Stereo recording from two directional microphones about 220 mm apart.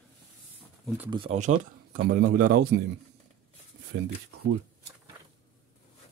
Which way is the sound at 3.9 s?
55° right (ahead or behind).